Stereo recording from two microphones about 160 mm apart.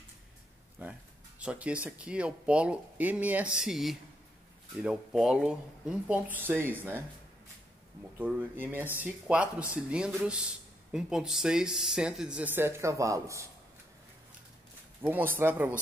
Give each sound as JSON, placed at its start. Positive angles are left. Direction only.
{"t": 0.8, "sound": "speech", "side_deg": -10}
{"t": 8.2, "sound": "speech", "side_deg": -10}
{"t": 15.0, "sound": "speech", "side_deg": -10}